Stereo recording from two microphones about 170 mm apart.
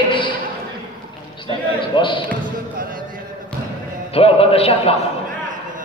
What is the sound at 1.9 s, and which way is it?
Speech, 30° left (ahead or behind).